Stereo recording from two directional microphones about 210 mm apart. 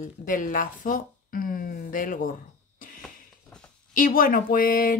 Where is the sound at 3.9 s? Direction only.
40° left (ahead or behind).